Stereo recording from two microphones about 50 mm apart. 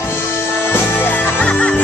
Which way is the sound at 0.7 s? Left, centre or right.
Left.